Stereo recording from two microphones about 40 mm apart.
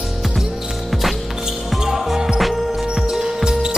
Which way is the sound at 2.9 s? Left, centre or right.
Centre.